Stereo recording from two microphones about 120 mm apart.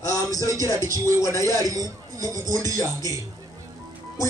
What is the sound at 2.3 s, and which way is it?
Speech, 90° right.